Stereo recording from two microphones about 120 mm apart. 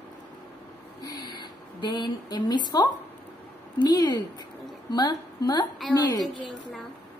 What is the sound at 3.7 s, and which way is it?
Speech, 35° left (ahead or behind).